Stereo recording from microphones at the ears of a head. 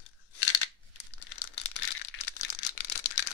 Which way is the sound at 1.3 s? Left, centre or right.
Left.